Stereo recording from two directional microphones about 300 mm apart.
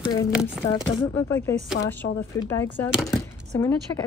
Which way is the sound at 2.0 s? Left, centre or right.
Left.